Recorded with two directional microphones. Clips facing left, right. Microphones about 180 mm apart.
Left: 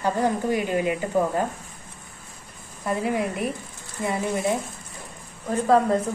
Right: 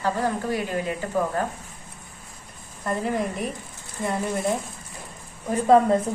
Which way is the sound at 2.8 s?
5° left (ahead or behind).